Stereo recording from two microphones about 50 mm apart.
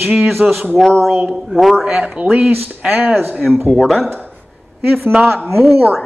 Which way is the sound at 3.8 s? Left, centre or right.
Centre.